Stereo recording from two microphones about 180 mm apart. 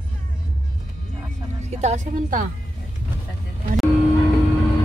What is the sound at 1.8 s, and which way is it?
Speech, 40° right (ahead or behind).